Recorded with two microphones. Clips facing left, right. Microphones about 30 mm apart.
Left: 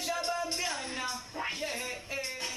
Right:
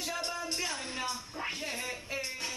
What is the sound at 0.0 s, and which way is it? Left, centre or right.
Music, centre.